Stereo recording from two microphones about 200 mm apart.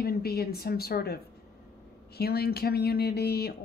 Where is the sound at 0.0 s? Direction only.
50° left (ahead or behind).